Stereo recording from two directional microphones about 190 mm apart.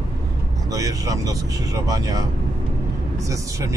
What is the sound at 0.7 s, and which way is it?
Speech, 15° right (ahead or behind).